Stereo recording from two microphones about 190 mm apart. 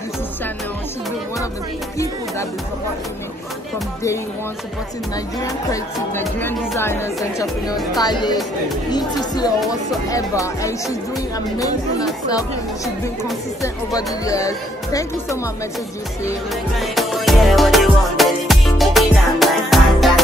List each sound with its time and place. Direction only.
5.4 s music: 15° left (ahead or behind)
8.0 s speech: 20° left (ahead or behind)
9.7 s music: 15° left (ahead or behind)
11.5 s speech: 20° left (ahead or behind)
13.6 s music: 20° left (ahead or behind)
16.8 s music: centre (ahead or behind)